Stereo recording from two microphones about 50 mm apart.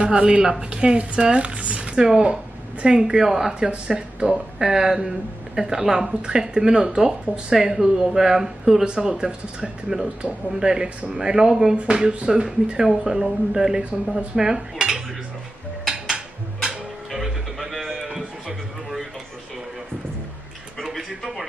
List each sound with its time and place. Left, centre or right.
0.0 s speech: centre
4.3 s speech: centre
14.1 s dishes: centre
17.1 s music: centre
17.8 s a sound: centre
20.8 s a sound: centre